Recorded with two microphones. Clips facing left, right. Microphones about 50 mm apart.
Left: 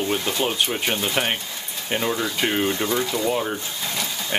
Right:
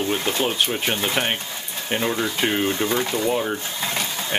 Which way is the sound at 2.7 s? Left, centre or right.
Right.